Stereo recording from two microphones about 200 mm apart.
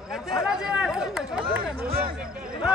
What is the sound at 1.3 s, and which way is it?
Speech, 5° right (ahead or behind).